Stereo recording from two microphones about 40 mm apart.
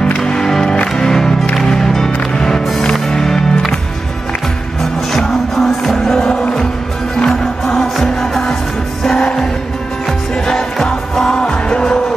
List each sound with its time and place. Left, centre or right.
0.5 s music: centre
5.6 s music: centre
7.2 s music: centre
11.7 s music: left